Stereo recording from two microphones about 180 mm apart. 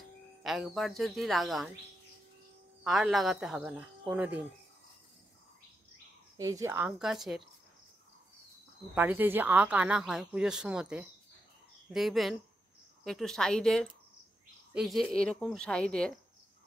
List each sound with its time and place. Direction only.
0.4 s speech: centre (ahead or behind)
2.8 s speech: centre (ahead or behind)
6.3 s speech: 15° right (ahead or behind)
7.0 s speech: centre (ahead or behind)
8.9 s speech: 10° right (ahead or behind)